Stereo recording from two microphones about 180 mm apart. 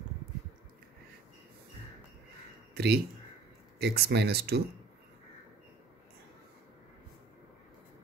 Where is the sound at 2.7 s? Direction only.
65° right (ahead or behind).